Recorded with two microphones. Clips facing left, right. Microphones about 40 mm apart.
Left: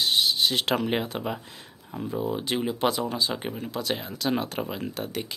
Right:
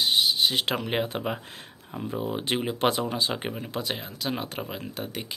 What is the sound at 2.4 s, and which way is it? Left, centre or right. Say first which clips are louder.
Speech: even; right.